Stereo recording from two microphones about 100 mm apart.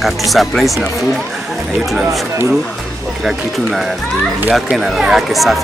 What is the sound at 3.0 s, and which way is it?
Speech, centre (ahead or behind).